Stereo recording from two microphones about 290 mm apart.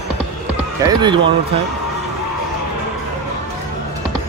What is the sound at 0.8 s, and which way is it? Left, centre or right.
Speech, centre.